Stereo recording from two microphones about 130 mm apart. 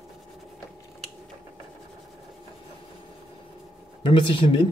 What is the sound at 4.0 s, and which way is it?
Speech, 40° left (ahead or behind).